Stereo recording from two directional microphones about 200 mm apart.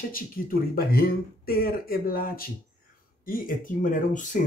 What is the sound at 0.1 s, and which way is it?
Speech, 50° left (ahead or behind).